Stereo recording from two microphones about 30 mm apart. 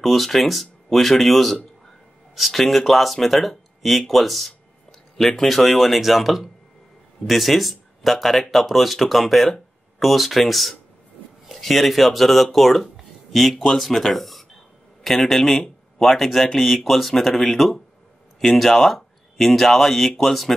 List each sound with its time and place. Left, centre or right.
0.0 s speech: centre